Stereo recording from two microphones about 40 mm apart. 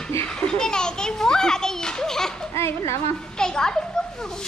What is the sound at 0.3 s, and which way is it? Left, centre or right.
Children playing, centre.